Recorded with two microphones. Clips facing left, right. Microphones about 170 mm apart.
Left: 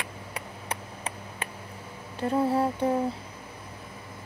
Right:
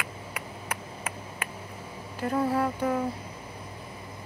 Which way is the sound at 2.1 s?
25° left (ahead or behind).